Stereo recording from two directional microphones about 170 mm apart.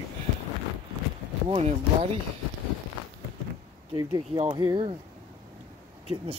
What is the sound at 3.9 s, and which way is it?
Speech, 30° right (ahead or behind).